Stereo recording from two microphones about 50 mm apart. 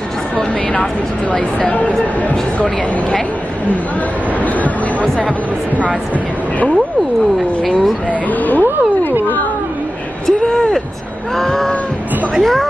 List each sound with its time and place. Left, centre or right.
1.3 s speech: left
8.1 s speech: left
10.2 s speech: centre
11.3 s a sound: centre
12.4 s speech: centre